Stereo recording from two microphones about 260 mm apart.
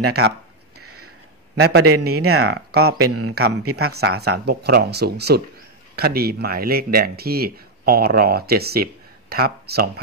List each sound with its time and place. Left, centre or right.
0.9 s a sound: right
2.4 s speech: right
3.1 s a man's voice: right
3.9 s speech: right